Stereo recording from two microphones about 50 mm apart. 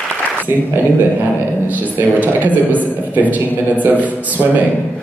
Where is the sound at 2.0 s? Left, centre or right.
Right.